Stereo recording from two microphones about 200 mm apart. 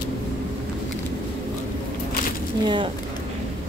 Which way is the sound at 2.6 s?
25° right (ahead or behind).